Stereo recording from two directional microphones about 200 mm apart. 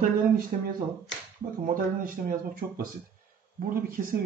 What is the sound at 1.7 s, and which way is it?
Speech, 45° right (ahead or behind).